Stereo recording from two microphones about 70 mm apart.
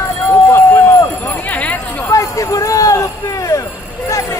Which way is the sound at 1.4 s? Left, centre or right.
Left.